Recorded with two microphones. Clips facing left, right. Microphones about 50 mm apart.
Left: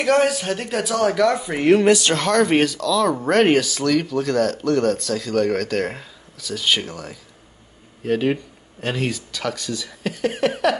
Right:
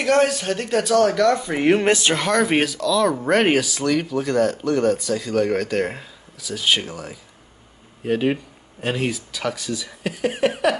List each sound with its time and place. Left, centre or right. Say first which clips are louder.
0.0 s speech: even; centre
1.8 s speech: left 3 dB; right
2.0 s speech: left 1 dB; centre